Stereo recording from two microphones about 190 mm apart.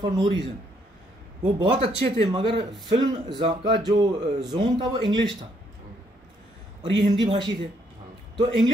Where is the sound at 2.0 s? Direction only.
30° right (ahead or behind).